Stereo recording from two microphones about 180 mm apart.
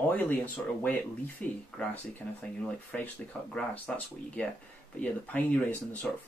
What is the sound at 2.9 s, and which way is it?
Speech, 10° left (ahead or behind).